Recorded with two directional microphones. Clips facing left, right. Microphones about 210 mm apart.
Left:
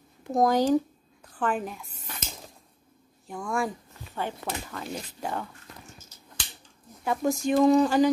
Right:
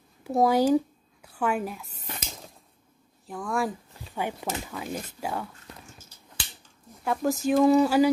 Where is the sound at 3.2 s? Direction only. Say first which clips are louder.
Right 1 dB; centre (ahead or behind).